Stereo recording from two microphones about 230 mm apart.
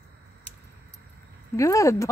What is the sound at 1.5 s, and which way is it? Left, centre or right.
Speech, centre.